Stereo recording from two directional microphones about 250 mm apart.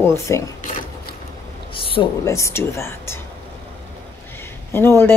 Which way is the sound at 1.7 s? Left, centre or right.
Left.